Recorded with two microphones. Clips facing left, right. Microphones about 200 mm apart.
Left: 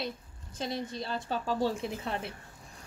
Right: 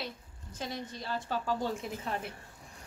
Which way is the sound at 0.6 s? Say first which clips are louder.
Left 4 dB; 25° left (ahead or behind).